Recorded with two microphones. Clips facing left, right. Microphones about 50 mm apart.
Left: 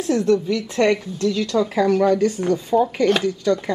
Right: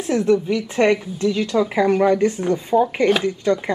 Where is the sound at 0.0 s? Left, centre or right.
Centre.